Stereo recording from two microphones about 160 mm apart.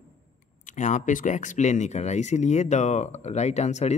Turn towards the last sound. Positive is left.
turn(degrees=45)  # may be behind; listen again after turning